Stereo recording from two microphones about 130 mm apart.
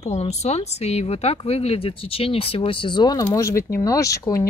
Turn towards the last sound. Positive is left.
turn(degrees=25)  # may be behind; listen again after turning